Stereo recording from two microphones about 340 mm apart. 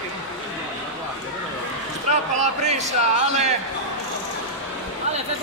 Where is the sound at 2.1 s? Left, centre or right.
Centre.